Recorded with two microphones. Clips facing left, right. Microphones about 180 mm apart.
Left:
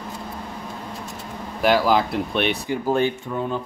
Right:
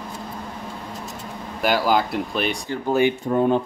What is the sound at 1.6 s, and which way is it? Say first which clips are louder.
Speech: left 2 dB; centre (ahead or behind).